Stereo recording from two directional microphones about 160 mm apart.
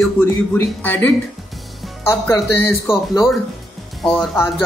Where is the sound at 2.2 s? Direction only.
15° left (ahead or behind).